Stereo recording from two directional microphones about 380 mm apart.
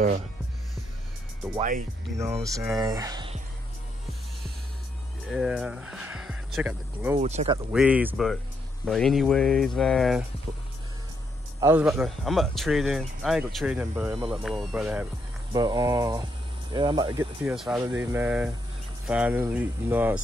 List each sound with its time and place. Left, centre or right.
2.1 s speech: centre
5.3 s speech: centre
7.2 s speech: centre
7.7 s speech: centre
11.6 s speech: centre